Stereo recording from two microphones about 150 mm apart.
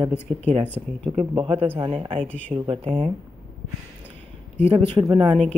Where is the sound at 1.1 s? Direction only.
30° right (ahead or behind).